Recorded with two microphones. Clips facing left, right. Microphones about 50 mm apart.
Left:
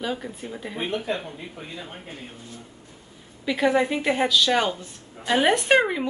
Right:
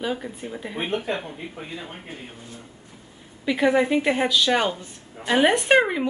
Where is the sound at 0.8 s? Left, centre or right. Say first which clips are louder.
Right 1 dB; right.